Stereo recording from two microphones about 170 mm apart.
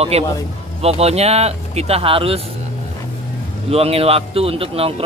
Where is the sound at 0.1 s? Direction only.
40° right (ahead or behind).